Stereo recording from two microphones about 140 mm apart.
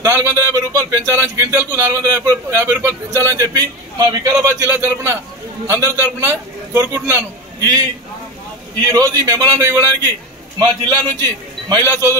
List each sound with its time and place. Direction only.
0.0 s a man's voice: 20° right (ahead or behind)
8.9 s a man's voice: 25° right (ahead or behind)